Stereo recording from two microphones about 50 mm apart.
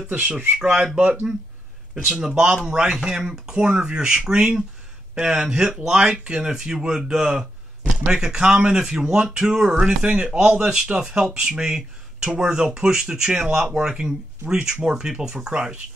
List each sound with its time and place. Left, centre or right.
0.1 s speech: right
0.6 s speech: centre
2.2 s speech: centre